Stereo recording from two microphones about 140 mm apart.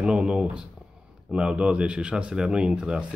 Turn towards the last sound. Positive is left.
turn(degrees=-5)  # may be behind; listen again after turning